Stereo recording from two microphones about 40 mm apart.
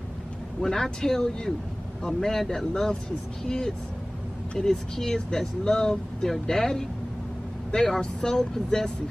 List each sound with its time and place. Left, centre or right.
0.6 s speech: centre